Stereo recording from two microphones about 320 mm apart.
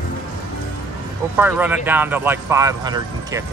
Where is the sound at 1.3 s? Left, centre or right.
Centre.